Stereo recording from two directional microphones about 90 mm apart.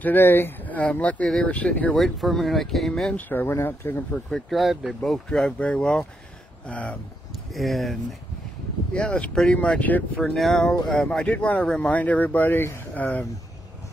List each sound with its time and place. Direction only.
0.0 s speech: 20° left (ahead or behind)
2.0 s speech: centre (ahead or behind); by 4.2 s 25° left (ahead or behind)
4.3 s speech: centre (ahead or behind)
7.5 s speech: centre (ahead or behind)
8.9 s speech: 15° left (ahead or behind)
10.2 s speech: centre (ahead or behind); by 13.2 s 15° left (ahead or behind)